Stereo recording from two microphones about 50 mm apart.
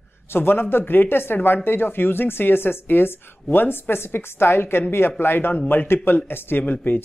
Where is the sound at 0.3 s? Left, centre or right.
Left.